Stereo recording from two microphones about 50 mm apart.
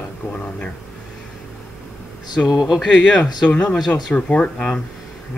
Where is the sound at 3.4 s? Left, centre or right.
Left.